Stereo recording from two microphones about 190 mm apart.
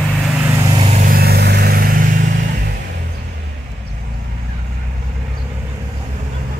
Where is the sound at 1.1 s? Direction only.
55° right (ahead or behind).